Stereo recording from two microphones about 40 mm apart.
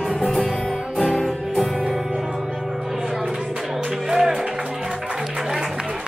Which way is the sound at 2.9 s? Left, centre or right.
Centre.